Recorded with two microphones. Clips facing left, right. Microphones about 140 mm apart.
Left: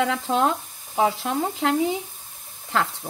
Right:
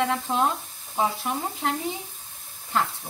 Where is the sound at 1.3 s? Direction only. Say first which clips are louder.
Left 4 dB; 90° left.